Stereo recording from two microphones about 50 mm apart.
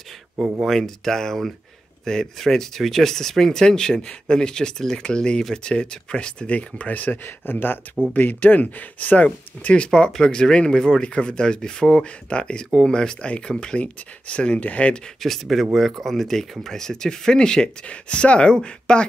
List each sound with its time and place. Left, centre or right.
0.7 s speech: centre; by 9.8 s left
9.8 s speech: centre
15.2 s speech: centre